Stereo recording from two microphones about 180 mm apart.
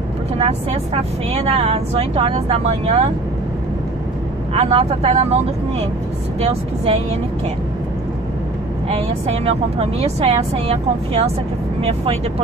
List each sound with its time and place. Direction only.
0.4 s speech: 35° right (ahead or behind)
4.6 s speech: 35° right (ahead or behind)
6.4 s speech: 35° right (ahead or behind)
8.8 s speech: 35° right (ahead or behind)